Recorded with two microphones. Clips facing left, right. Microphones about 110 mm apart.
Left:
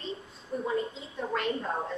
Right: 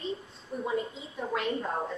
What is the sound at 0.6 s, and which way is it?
A woman's voice, 5° right (ahead or behind).